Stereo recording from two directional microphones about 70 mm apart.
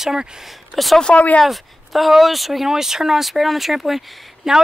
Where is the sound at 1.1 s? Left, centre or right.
Centre.